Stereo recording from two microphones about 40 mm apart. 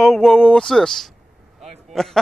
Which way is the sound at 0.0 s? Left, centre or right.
Centre.